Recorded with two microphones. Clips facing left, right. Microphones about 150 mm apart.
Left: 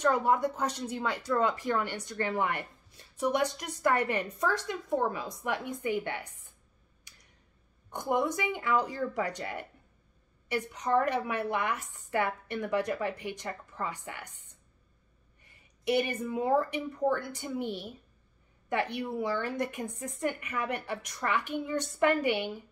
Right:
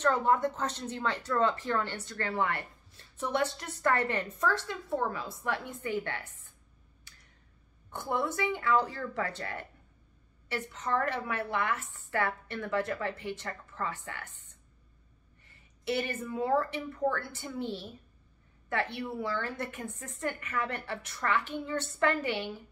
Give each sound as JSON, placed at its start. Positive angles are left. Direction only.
{"t": 0.0, "sound": "speech", "side_deg": 10}
{"t": 7.1, "sound": "a sound", "side_deg": 15}
{"t": 7.9, "sound": "speech", "side_deg": 15}
{"t": 15.4, "sound": "speech", "side_deg": 15}